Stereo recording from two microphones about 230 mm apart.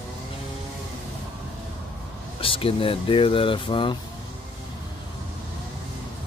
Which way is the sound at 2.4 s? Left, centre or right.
Left.